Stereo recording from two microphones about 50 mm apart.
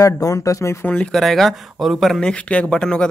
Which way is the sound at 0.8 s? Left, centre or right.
Left.